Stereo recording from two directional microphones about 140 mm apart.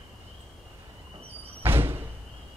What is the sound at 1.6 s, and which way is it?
Door, 15° right (ahead or behind).